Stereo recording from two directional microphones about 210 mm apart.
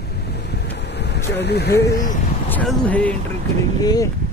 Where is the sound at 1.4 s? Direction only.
50° left (ahead or behind).